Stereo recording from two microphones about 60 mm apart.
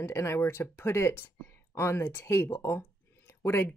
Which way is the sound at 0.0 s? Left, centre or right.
Left.